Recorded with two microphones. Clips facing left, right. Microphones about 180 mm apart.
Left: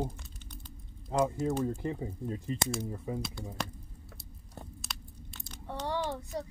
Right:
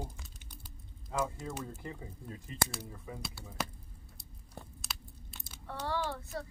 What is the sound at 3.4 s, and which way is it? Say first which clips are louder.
Speech: left 8 dB; 5° right (ahead or behind).